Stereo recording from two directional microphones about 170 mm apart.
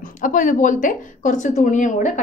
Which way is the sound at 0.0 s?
50° left (ahead or behind).